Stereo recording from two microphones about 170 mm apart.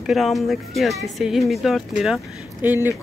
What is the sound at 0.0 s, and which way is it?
Speech, centre (ahead or behind).